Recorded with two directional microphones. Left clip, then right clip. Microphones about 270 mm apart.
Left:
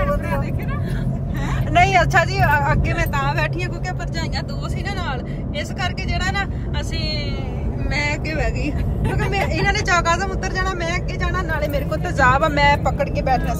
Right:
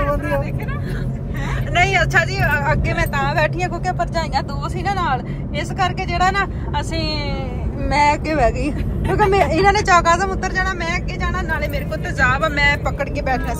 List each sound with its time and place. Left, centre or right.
1.7 s speech: centre
7.9 s speech: centre